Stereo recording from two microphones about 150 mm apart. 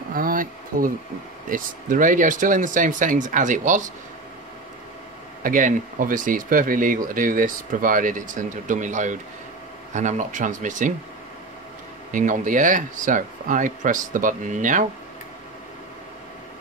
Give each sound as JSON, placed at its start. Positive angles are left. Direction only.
{"t": 0.1, "sound": "a sound", "side_deg": -70}
{"t": 1.5, "sound": "speech", "side_deg": -65}
{"t": 5.4, "sound": "speech", "side_deg": -60}
{"t": 12.1, "sound": "speech", "side_deg": -60}